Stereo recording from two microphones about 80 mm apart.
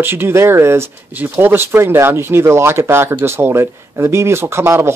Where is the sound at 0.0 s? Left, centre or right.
Right.